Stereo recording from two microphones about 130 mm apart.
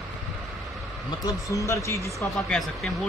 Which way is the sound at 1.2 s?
25° left (ahead or behind).